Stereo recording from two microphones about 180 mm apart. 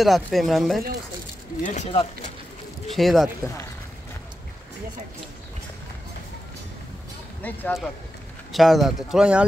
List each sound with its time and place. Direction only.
0.0 s speech: centre (ahead or behind)
1.6 s speech: 45° left (ahead or behind)
2.9 s speech: centre (ahead or behind)
7.4 s speech: 5° left (ahead or behind)